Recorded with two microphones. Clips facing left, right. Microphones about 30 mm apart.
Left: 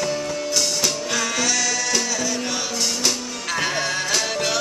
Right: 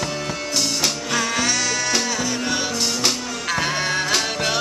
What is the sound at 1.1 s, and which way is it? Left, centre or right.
Music, centre.